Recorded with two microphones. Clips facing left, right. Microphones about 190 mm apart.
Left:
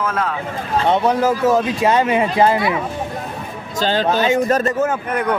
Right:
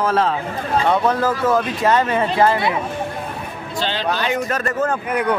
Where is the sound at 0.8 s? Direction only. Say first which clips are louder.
Left 3 dB; 20° left (ahead or behind).